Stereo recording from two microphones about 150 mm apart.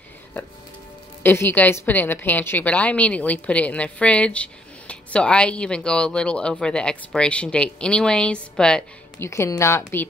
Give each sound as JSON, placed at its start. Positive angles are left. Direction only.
{"t": 1.2, "sound": "a woman's voice", "side_deg": 15}
{"t": 9.2, "sound": "a woman's voice", "side_deg": 20}